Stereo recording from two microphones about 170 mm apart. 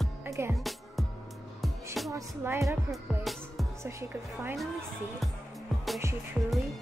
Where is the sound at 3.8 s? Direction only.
15° right (ahead or behind).